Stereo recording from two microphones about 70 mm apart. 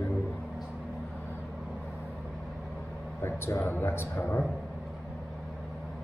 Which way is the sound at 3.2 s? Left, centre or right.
Left.